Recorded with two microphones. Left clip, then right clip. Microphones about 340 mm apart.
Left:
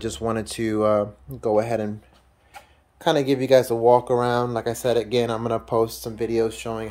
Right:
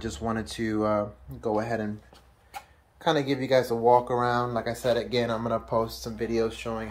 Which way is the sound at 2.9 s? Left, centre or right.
Left.